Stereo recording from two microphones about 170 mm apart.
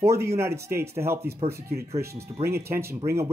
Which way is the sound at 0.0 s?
15° right (ahead or behind).